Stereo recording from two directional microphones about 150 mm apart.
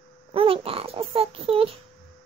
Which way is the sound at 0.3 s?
40° right (ahead or behind).